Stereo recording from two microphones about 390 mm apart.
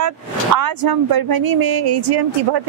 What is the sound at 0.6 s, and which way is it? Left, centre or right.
Speech, right.